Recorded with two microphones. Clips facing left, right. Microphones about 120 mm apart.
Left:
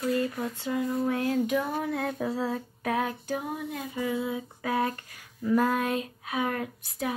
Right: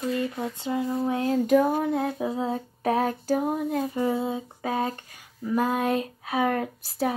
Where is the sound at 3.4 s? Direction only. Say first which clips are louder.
Right 8 dB; 45° right (ahead or behind).